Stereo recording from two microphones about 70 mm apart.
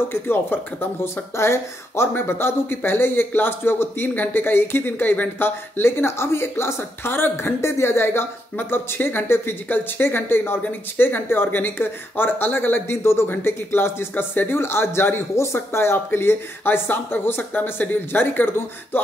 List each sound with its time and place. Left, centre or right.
0.1 s speech: left